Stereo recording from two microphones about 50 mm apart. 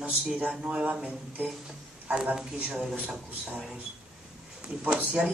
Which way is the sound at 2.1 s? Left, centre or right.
Centre.